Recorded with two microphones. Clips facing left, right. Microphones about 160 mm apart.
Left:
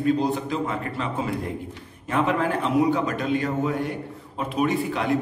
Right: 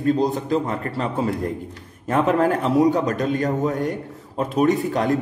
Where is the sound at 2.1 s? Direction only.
40° right (ahead or behind).